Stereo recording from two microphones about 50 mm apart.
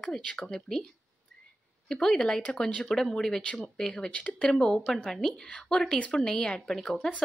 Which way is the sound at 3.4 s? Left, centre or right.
Left.